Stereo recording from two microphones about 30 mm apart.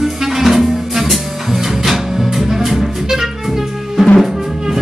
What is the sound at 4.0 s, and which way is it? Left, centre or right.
Drum, centre.